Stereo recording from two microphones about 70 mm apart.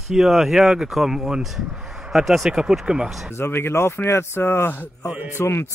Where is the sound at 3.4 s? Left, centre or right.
Left.